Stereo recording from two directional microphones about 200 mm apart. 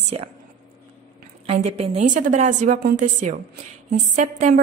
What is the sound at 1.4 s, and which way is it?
A woman's voice, 30° right (ahead or behind).